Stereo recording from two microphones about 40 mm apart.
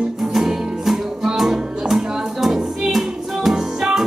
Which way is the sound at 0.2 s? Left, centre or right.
Centre.